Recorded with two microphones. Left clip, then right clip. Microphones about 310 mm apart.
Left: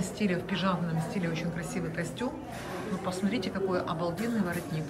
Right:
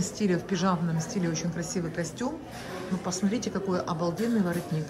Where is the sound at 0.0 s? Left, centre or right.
Centre.